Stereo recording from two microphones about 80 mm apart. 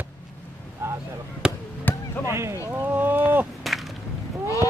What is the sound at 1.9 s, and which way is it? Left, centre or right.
Basketball bounce, left.